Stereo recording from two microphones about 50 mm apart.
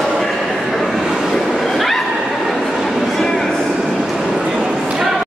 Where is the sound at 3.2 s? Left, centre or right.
Centre.